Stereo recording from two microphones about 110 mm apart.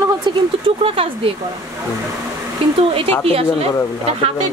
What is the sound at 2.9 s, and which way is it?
Speech, 60° right (ahead or behind).